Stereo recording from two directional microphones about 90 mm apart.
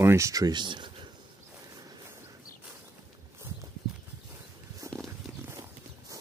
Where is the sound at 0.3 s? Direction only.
50° right (ahead or behind).